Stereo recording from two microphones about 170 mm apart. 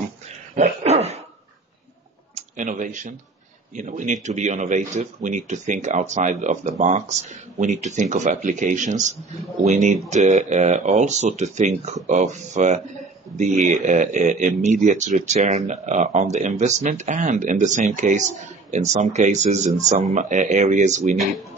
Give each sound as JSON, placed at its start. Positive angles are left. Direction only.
{"t": 0.6, "sound": "dog", "side_deg": -40}
{"t": 2.3, "sound": "speech", "side_deg": -50}